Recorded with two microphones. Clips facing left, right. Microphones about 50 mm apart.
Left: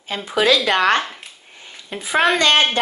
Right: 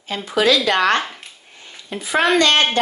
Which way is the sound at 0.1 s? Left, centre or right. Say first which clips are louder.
Even; left.